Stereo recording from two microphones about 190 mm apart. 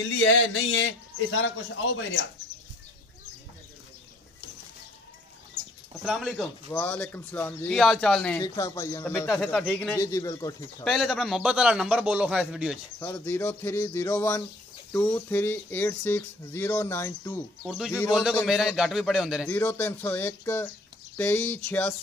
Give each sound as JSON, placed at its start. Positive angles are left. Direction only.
{"t": 0.2, "sound": "a sound", "side_deg": 75}
{"t": 1.3, "sound": "a man's voice", "side_deg": 80}
{"t": 6.0, "sound": "a man's voice", "side_deg": 0}
{"t": 8.4, "sound": "speech", "side_deg": 15}
{"t": 9.3, "sound": "speech", "side_deg": 0}
{"t": 10.8, "sound": "a man's voice", "side_deg": 0}
{"t": 13.0, "sound": "speech", "side_deg": 10}
{"t": 17.6, "sound": "a man's voice", "side_deg": -5}
{"t": 19.4, "sound": "speech", "side_deg": 10}